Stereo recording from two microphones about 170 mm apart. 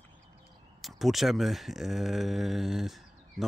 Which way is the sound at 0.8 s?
Centre (ahead or behind).